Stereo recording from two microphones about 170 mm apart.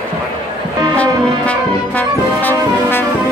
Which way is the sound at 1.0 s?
10° left (ahead or behind).